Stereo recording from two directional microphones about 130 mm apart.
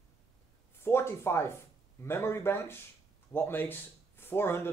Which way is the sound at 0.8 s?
20° left (ahead or behind).